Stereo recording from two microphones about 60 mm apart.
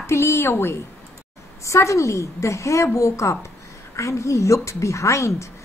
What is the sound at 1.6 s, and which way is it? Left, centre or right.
A woman's voice, left.